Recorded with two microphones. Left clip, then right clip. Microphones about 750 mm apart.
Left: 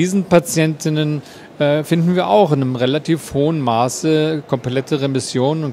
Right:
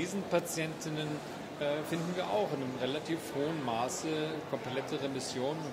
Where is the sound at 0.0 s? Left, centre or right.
Left.